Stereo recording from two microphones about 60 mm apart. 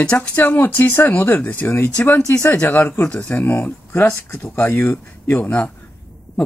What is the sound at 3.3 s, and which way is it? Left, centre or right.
Speech, left.